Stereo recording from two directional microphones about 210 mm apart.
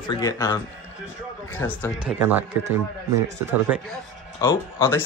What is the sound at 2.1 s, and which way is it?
Speech, centre (ahead or behind).